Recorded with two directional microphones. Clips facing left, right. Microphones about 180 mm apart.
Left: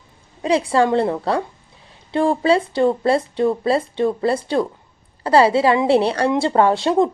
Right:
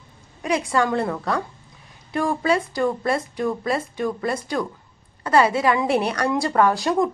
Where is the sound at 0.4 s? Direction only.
30° left (ahead or behind).